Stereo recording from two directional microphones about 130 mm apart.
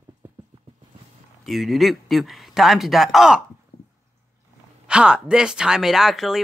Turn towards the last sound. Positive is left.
turn(degrees=0)  # may be behind; listen again after turning